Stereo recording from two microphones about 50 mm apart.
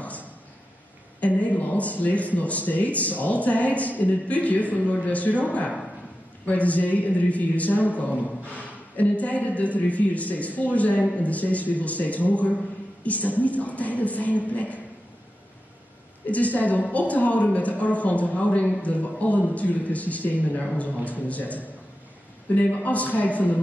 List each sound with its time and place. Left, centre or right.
1.2 s speech: left
16.3 s speech: left